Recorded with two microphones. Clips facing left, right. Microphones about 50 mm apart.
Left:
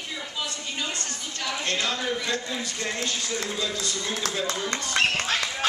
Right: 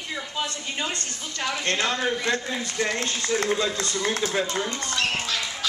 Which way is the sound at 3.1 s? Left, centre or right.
Right.